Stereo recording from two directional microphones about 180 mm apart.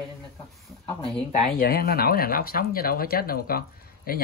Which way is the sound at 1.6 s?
60° left (ahead or behind).